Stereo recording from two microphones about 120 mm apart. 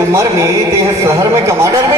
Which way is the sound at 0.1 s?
25° right (ahead or behind).